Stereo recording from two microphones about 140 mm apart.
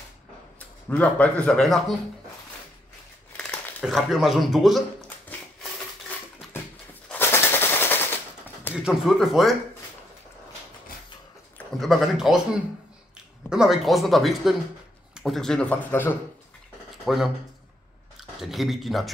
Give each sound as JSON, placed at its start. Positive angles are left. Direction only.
{"t": 0.6, "sound": "speech", "side_deg": 10}
{"t": 3.8, "sound": "speech", "side_deg": 0}
{"t": 7.1, "sound": "machine gun", "side_deg": 15}
{"t": 8.7, "sound": "speech", "side_deg": -5}
{"t": 11.8, "sound": "speech", "side_deg": 0}
{"t": 13.5, "sound": "speech", "side_deg": -5}
{"t": 17.0, "sound": "speech", "side_deg": 0}
{"t": 18.4, "sound": "speech", "side_deg": 0}